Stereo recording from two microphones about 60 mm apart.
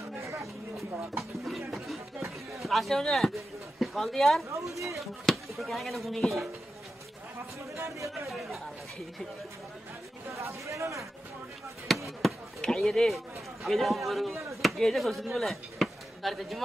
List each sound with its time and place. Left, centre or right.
0.2 s a sound: right
1.7 s music: centre
2.6 s a man's voice: centre
4.5 s speech: right
4.9 s speech: centre
7.7 s speech: right
8.3 s speech: centre
10.3 s speech: right
11.9 s speech: centre